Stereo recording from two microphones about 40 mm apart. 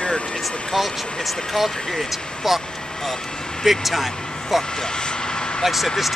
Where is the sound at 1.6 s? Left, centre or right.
Centre.